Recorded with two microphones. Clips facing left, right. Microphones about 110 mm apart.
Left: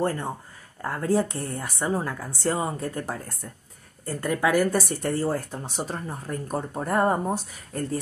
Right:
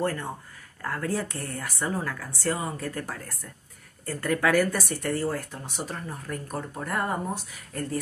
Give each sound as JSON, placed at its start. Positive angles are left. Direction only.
{"t": 0.0, "sound": "speech", "side_deg": 25}